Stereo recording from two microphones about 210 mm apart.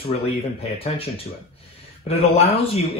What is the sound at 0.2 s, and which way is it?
Speech, 30° left (ahead or behind).